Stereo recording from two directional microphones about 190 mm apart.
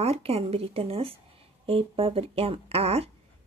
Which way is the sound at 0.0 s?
30° right (ahead or behind).